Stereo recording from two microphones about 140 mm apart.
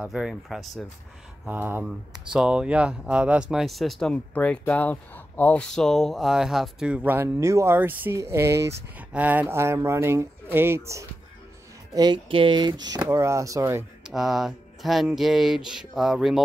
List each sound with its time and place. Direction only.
0.0 s speech: 5° right (ahead or behind)
1.4 s speech: 10° right (ahead or behind)
11.9 s speech: 30° right (ahead or behind)
13.1 s speech: 20° right (ahead or behind)
14.1 s speech: centre (ahead or behind)